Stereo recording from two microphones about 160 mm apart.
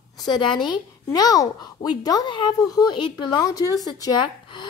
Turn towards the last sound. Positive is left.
turn(degrees=30)  # may be behind; listen again after turning